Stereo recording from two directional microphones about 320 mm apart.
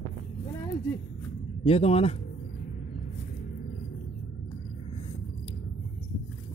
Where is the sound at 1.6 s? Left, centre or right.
Centre.